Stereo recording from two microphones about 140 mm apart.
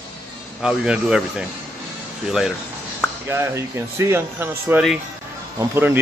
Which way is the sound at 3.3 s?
20° right (ahead or behind).